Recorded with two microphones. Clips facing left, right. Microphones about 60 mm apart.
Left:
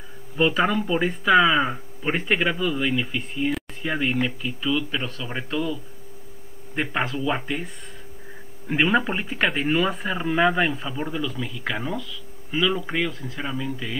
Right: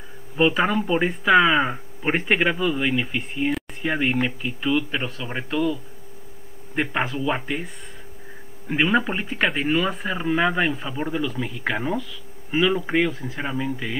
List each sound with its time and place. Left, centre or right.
0.4 s speech: centre
4.4 s speech: right
6.8 s speech: centre